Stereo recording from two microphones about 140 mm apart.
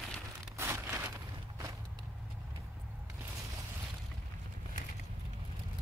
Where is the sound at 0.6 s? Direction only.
15° right (ahead or behind).